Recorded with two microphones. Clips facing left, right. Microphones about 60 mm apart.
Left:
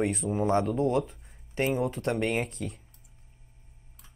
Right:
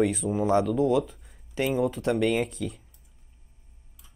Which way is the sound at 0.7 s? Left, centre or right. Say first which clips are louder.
Right 3 dB; left.